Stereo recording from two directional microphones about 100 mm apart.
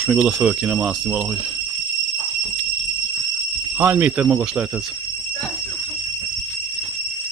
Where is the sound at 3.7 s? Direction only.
20° right (ahead or behind).